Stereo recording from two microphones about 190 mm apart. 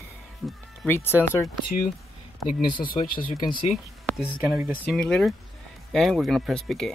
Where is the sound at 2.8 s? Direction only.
50° left (ahead or behind).